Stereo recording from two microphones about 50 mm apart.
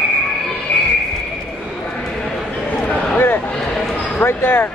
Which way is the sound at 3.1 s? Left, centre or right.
Left.